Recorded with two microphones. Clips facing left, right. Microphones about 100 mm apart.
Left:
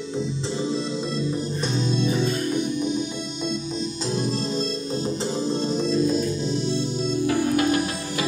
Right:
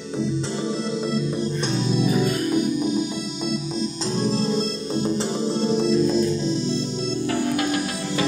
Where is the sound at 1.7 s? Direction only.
5° right (ahead or behind).